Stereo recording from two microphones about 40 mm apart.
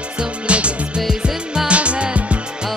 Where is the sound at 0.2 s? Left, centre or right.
Right.